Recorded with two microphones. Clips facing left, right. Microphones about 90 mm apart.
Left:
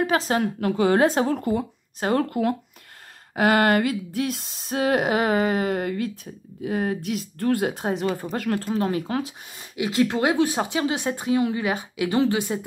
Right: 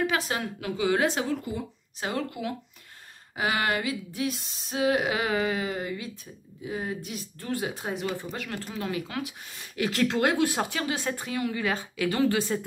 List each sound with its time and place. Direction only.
0.0 s speech: 35° left (ahead or behind); by 5.0 s 55° left (ahead or behind)
5.0 s speech: 40° left (ahead or behind); by 7.2 s 75° left (ahead or behind)
7.3 s speech: 55° left (ahead or behind)
7.9 s speech: 40° left (ahead or behind)
9.5 s a woman's voice: 15° left (ahead or behind)